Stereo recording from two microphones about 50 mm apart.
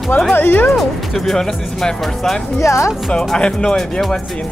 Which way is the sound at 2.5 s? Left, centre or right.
Left.